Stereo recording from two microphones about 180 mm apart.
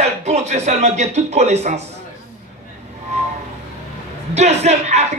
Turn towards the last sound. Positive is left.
turn(degrees=-40)  # may be behind; listen again after turning